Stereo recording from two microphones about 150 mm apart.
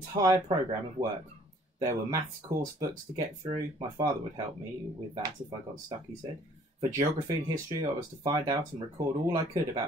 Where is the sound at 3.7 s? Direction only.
25° right (ahead or behind).